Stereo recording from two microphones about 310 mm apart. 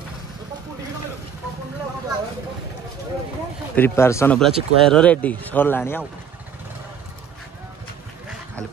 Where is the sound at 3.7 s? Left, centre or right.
Centre.